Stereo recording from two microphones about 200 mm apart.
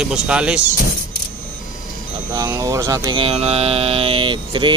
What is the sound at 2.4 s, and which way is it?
Speech, 20° right (ahead or behind).